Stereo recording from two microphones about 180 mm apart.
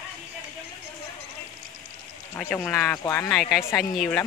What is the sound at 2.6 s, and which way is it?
Speech, 5° left (ahead or behind).